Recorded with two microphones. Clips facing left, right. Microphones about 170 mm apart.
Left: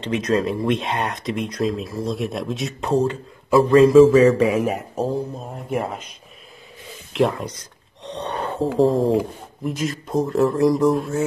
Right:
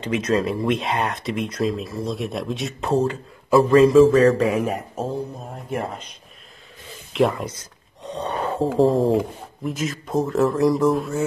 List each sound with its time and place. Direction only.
0.0 s speech: centre (ahead or behind)
7.1 s speech: centre (ahead or behind)